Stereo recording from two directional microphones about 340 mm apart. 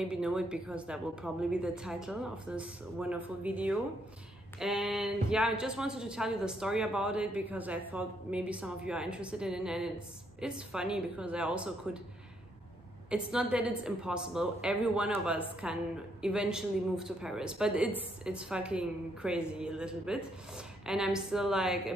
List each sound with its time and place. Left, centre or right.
0.0 s a woman's voice: centre
13.1 s a woman's voice: centre